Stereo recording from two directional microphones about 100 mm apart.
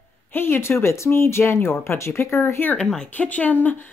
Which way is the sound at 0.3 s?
25° left (ahead or behind).